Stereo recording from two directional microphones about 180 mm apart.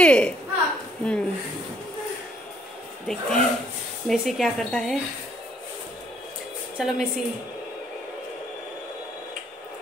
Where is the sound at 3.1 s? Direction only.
5° left (ahead or behind).